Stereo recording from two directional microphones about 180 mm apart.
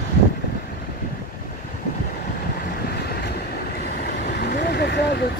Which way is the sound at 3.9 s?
55° left (ahead or behind).